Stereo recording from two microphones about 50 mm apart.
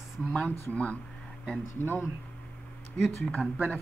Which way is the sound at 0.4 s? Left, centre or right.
Left.